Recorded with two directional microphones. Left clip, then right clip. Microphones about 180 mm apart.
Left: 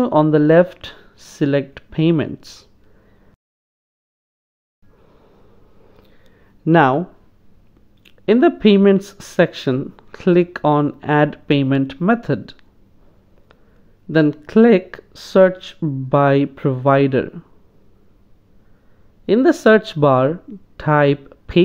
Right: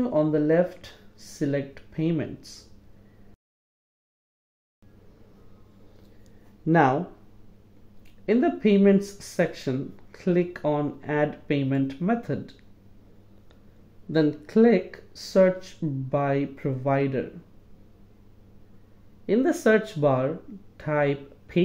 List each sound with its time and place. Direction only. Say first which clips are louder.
0.0 s speech: left 9 dB; 30° left (ahead or behind)
6.6 s speech: left 7 dB; 25° left (ahead or behind)
8.3 s speech: left 9 dB; 30° left (ahead or behind)
14.1 s speech: left 8 dB; 25° left (ahead or behind)
19.2 s speech: left 9 dB; 25° left (ahead or behind)